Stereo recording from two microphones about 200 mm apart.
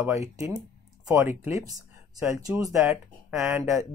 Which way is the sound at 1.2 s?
10° right (ahead or behind).